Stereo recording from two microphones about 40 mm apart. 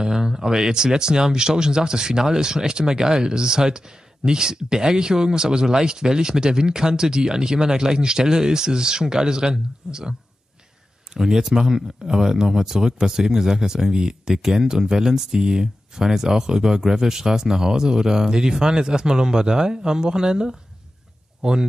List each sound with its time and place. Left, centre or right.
0.0 s speech: centre
11.1 s speech: centre